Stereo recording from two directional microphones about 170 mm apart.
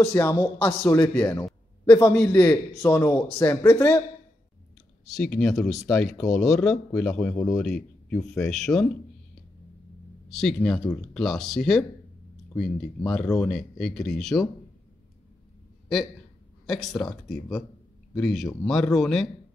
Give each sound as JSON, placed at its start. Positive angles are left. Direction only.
{"t": 0.0, "sound": "speech", "side_deg": 15}
{"t": 5.1, "sound": "speech", "side_deg": 5}
{"t": 8.1, "sound": "speech", "side_deg": 5}
{"t": 10.3, "sound": "speech", "side_deg": 5}
{"t": 16.6, "sound": "speech", "side_deg": 0}